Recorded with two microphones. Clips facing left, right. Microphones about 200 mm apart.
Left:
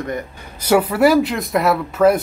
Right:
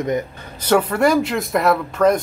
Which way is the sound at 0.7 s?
10° left (ahead or behind).